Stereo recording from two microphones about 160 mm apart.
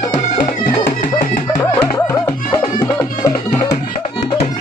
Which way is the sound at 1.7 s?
10° left (ahead or behind).